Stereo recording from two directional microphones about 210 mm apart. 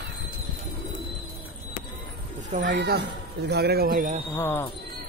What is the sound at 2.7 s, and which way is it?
Speech, 50° right (ahead or behind).